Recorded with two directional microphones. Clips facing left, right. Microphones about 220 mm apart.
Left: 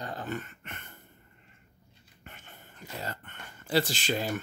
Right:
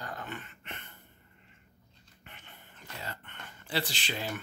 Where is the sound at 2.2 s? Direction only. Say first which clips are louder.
Left 3 dB; 45° left (ahead or behind).